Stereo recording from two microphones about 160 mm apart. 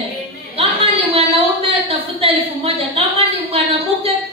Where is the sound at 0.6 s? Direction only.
35° right (ahead or behind).